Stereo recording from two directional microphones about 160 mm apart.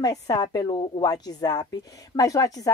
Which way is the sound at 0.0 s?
25° left (ahead or behind).